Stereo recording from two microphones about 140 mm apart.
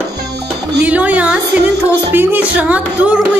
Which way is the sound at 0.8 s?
10° right (ahead or behind).